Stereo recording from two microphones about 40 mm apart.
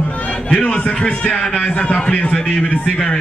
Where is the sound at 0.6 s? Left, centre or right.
Left.